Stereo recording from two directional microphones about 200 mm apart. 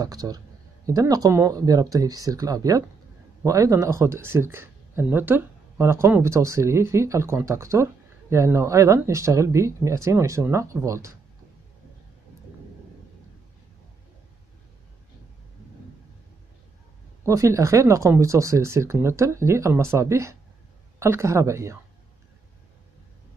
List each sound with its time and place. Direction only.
0.0 s a man's voice: 20° right (ahead or behind)
17.2 s speech: 15° right (ahead or behind)